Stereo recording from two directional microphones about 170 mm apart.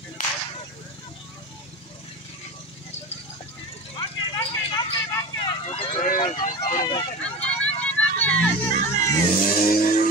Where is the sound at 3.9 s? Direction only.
25° left (ahead or behind).